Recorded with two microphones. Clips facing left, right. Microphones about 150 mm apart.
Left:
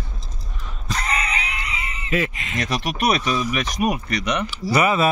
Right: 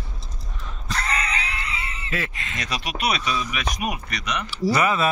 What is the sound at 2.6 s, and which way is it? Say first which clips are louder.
Speech: left 5 dB; 45° left (ahead or behind).